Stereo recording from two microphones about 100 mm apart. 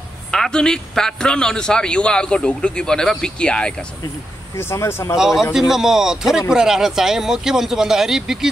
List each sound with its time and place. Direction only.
0.3 s a man's voice: 5° left (ahead or behind)
4.6 s speech: 25° left (ahead or behind)
5.1 s speech: 5° right (ahead or behind)